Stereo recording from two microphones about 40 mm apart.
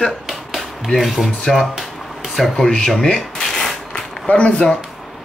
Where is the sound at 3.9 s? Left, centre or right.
Left.